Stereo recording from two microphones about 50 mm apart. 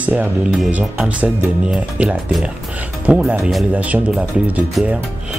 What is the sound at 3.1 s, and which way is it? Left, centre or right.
Speech, right.